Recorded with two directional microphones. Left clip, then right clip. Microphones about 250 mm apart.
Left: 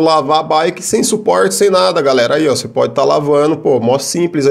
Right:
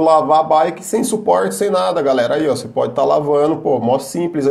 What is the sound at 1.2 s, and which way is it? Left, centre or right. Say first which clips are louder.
Speech: left 4 dB; left.